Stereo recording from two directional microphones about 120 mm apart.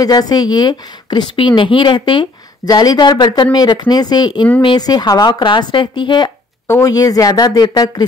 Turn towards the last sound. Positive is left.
turn(degrees=35)  # may be behind; listen again after turning